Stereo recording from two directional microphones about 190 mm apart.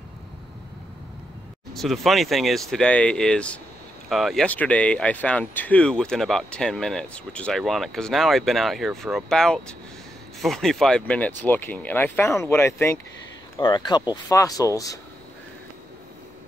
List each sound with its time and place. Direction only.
1.7 s speech: centre (ahead or behind); by 15.0 s 20° left (ahead or behind)